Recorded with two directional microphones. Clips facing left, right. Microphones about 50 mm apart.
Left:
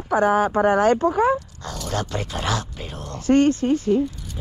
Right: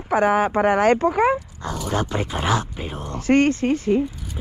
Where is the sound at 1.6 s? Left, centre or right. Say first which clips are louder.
Right 3 dB; centre.